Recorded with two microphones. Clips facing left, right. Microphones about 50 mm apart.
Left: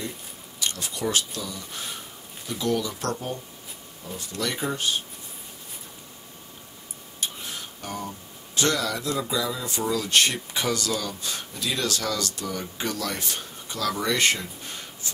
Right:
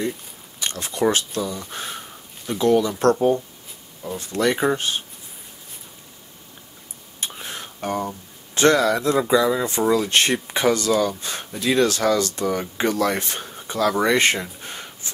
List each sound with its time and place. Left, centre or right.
0.6 s speech: right
7.2 s whispering: right
7.8 s speech: right
9.7 s speech: right